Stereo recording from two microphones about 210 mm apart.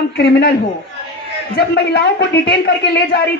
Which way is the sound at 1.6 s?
50° left (ahead or behind).